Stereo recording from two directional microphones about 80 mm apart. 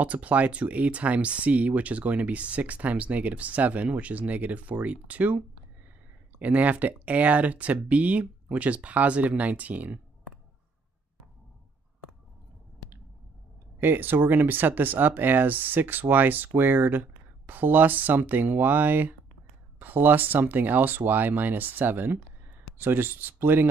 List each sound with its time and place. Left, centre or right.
0.0 s speech: centre
13.7 s speech: right